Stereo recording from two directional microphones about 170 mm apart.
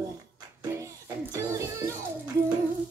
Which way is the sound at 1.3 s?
20° right (ahead or behind).